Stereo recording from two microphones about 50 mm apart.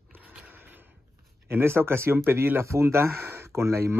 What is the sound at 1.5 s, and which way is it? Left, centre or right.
Speech, right.